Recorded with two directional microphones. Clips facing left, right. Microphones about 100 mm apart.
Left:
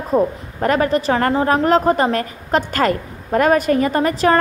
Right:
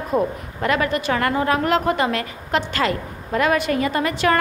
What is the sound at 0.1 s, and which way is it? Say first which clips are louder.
Speech: left 4 dB; centre (ahead or behind).